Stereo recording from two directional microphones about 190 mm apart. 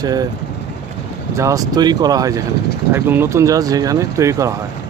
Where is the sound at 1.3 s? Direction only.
15° right (ahead or behind).